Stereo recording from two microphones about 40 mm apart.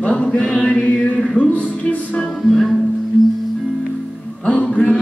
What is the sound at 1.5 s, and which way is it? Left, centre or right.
Music, left.